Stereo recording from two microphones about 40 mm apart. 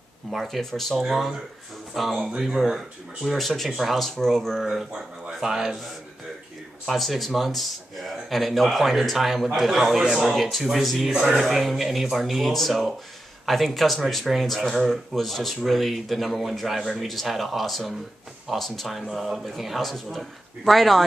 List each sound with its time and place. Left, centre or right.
0.3 s speech: centre
0.9 s speech: centre
4.6 s speech: centre
6.9 s speech: centre
11.1 s speech: centre
11.4 s speech: centre